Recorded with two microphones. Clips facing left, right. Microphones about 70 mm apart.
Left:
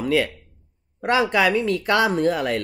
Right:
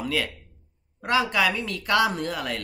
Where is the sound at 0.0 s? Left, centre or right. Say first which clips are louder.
Left 7 dB; left.